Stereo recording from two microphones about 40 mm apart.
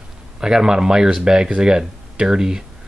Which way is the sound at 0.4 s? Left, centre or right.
Centre.